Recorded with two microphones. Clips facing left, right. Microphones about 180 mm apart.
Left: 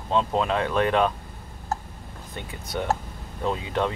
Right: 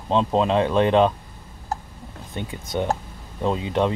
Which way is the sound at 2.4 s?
25° right (ahead or behind).